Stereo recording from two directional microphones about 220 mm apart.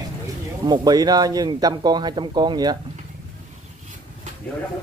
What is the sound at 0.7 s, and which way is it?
Speech, 20° right (ahead or behind).